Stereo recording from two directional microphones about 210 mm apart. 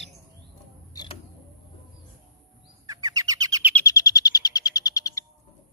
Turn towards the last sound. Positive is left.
turn(degrees=15)  # may be behind; listen again after turning